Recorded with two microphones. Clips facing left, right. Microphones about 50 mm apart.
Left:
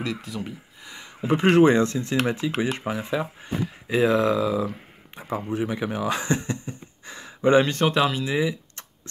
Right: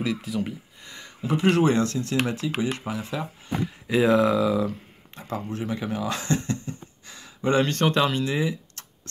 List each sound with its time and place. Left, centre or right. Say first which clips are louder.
0.0 s speech: right 3 dB; centre
1.2 s speech: left 4 dB; left
3.9 s speech: right 1 dB; centre
5.1 s speech: left 4 dB; centre